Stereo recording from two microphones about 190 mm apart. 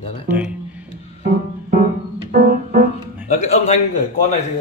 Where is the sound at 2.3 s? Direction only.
50° right (ahead or behind).